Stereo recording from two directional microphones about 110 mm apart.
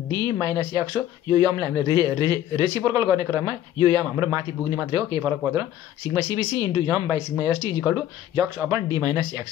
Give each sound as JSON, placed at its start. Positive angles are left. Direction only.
{"t": 0.1, "sound": "a man's voice", "side_deg": -35}
{"t": 6.3, "sound": "a man's voice", "side_deg": -35}